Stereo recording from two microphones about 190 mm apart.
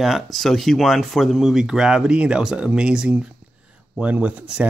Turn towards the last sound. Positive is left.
turn(degrees=-5)  # may be behind; listen again after turning